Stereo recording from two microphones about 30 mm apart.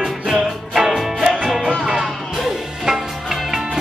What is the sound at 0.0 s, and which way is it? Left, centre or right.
Music, centre.